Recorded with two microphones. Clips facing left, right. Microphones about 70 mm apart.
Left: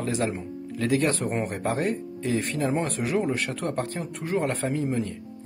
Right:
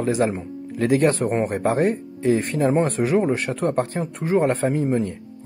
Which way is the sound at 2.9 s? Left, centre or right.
Right.